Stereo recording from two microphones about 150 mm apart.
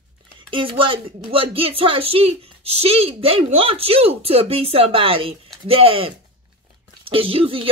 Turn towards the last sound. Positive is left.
turn(degrees=-35)  # may be behind; listen again after turning